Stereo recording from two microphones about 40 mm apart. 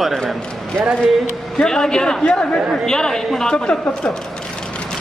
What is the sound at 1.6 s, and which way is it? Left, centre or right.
Speech, centre.